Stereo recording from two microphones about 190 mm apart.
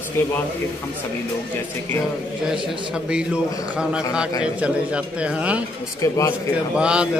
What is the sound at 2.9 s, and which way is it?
Speech, 5° right (ahead or behind).